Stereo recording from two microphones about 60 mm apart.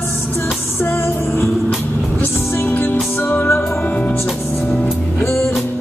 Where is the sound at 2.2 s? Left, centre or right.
Left.